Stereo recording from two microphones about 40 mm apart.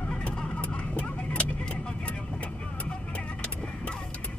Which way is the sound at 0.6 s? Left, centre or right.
Left.